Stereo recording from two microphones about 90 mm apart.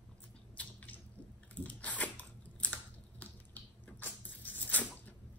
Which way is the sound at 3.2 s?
20° left (ahead or behind).